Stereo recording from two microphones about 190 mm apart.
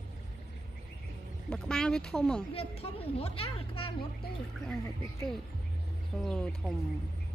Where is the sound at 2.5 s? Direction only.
30° left (ahead or behind).